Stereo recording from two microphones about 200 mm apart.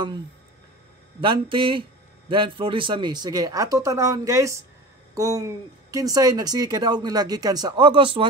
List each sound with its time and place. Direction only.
1.2 s speech: 25° right (ahead or behind)